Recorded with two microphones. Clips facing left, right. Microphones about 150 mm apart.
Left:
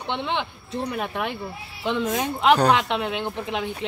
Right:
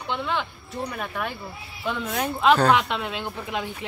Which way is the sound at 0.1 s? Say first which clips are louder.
Left 1 dB; 20° left (ahead or behind).